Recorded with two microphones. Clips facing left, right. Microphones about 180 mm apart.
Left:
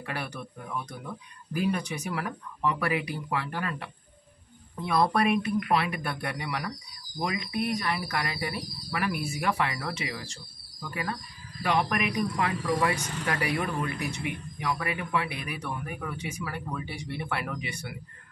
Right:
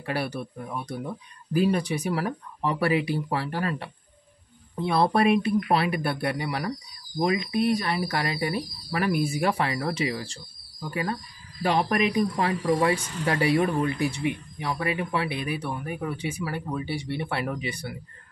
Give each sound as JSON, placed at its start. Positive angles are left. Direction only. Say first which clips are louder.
{"t": 0.0, "sound": "speech", "louder": "right 6 dB", "side_deg": -30}